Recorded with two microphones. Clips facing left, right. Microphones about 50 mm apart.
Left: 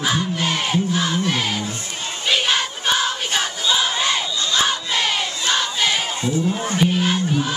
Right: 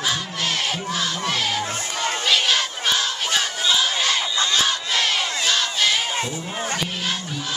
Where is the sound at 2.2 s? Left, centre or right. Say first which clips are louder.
Left 2 dB; centre.